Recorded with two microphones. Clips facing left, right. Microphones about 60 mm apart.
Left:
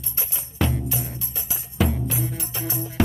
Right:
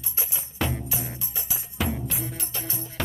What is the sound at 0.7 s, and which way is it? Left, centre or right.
Music, centre.